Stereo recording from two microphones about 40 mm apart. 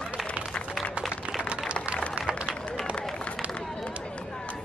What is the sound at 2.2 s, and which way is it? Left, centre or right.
Run, right.